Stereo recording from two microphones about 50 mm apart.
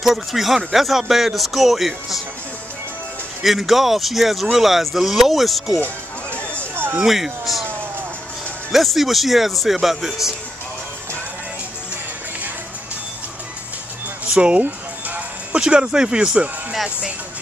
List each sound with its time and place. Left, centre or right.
0.0 s speech: centre
3.4 s speech: centre
6.7 s a sound: right
7.1 s speech: centre
8.7 s speech: centre
14.6 s music: right
15.6 s speech: centre